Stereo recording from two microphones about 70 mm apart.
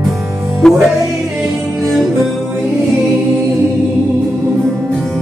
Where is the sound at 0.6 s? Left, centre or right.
Centre.